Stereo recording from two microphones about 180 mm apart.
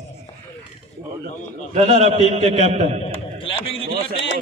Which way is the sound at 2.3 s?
35° right (ahead or behind).